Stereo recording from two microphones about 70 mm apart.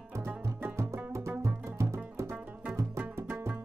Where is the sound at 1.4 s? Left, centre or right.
Right.